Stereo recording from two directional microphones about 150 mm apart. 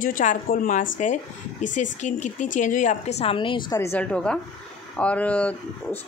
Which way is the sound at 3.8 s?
10° left (ahead or behind).